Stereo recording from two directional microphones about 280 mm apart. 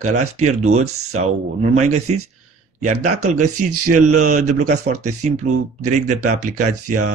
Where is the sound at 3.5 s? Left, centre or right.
Right.